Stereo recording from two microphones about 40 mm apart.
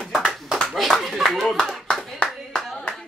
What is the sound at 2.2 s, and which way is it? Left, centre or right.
Clapping, centre.